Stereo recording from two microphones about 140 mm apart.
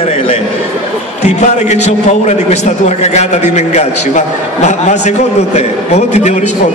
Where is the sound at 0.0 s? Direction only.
45° left (ahead or behind).